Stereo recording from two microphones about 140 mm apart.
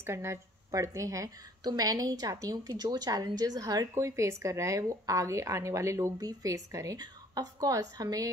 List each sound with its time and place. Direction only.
0.0 s a woman's voice: 20° right (ahead or behind)